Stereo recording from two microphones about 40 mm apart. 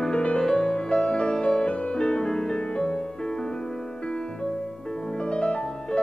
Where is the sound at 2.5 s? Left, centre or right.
Left.